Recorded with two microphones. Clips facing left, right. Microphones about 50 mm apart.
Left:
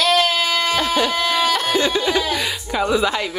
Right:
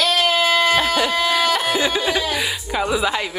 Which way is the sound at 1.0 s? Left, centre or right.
Centre.